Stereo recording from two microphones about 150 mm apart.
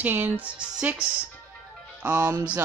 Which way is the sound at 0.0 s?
15° right (ahead or behind).